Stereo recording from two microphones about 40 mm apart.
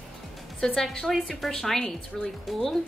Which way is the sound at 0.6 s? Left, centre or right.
Centre.